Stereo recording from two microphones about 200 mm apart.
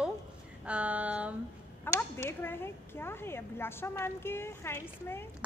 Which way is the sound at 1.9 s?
10° left (ahead or behind).